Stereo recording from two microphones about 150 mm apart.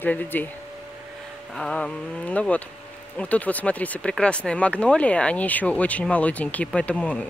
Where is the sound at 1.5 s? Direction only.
5° left (ahead or behind).